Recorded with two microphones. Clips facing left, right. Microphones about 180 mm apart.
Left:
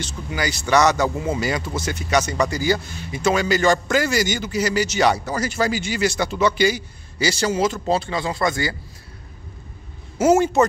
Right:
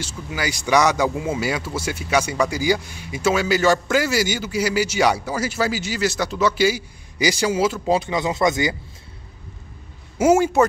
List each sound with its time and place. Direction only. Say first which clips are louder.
0.0 s speech: left 1 dB; 5° right (ahead or behind)
10.1 s a man's voice: even; 10° right (ahead or behind)